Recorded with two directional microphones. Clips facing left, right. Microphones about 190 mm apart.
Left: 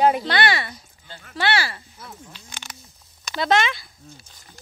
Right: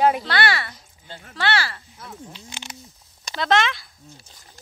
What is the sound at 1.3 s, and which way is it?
Speech, 15° left (ahead or behind).